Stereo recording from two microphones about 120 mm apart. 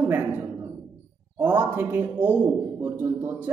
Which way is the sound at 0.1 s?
15° right (ahead or behind).